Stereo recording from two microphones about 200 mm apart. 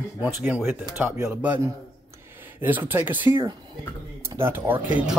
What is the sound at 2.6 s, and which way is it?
Speech, 10° right (ahead or behind).